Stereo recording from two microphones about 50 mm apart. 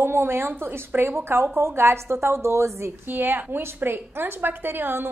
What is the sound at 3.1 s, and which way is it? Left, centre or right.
A woman's voice, right.